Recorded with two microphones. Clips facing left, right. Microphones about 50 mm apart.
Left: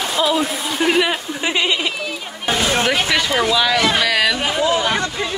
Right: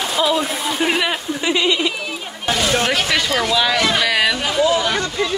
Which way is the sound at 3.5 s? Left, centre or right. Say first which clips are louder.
Even; centre.